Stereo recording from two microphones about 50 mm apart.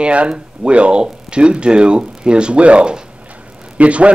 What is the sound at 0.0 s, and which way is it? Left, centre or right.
A man's voice, right.